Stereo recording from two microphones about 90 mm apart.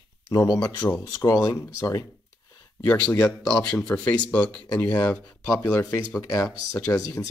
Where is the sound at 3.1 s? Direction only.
45° left (ahead or behind).